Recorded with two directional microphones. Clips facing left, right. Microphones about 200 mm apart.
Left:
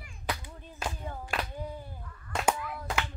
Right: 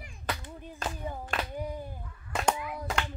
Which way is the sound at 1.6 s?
15° right (ahead or behind).